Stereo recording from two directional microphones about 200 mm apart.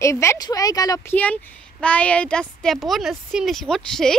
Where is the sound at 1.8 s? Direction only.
5° left (ahead or behind).